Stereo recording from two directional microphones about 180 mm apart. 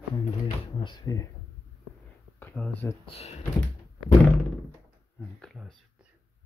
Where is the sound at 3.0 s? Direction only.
35° left (ahead or behind).